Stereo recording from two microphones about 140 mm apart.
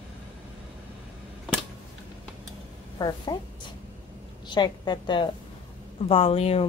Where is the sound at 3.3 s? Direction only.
30° left (ahead or behind).